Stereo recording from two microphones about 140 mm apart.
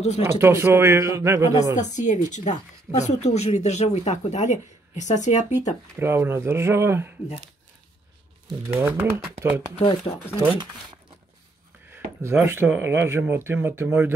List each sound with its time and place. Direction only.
0.4 s speech: 20° right (ahead or behind)
1.8 s speech: 60° left (ahead or behind)
5.9 s speech: 15° right (ahead or behind)
8.6 s speech: 15° right (ahead or behind)
9.8 s speech: 45° left (ahead or behind)
11.9 s a sound: 15° right (ahead or behind)
12.4 s speech: 15° right (ahead or behind)